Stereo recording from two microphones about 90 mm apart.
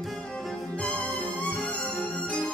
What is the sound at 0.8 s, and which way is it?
Music, 10° left (ahead or behind).